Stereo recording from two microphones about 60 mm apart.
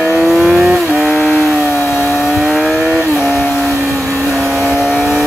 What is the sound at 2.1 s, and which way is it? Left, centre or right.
Vehicle, centre.